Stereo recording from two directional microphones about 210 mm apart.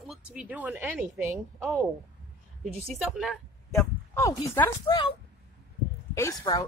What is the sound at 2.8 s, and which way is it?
A woman's voice, centre (ahead or behind).